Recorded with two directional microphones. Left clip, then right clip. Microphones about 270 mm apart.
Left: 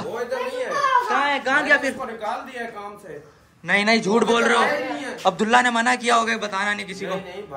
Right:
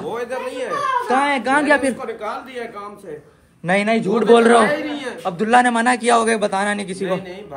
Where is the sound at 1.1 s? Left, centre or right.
Right.